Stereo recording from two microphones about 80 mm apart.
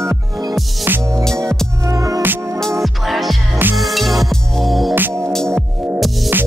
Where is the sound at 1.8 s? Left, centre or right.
Right.